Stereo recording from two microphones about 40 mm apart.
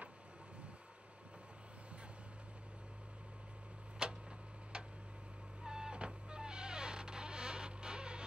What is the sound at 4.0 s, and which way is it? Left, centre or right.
Tick-tock, right.